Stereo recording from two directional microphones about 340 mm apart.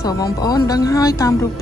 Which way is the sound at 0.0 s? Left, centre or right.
Centre.